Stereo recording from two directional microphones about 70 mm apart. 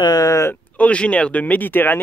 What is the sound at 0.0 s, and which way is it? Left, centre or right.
Speech, left.